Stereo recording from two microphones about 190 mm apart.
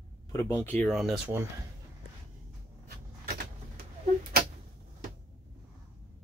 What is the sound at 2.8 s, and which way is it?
Door, 55° right (ahead or behind).